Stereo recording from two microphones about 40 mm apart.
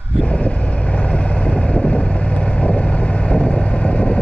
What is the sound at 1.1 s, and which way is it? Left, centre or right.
Vehicle, left.